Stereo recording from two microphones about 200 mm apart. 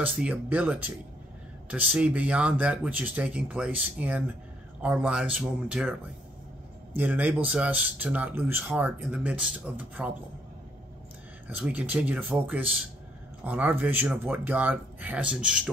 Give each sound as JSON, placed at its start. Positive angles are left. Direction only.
{"t": 0.0, "sound": "speech", "side_deg": -5}
{"t": 7.0, "sound": "speech", "side_deg": -10}
{"t": 11.4, "sound": "speech", "side_deg": -5}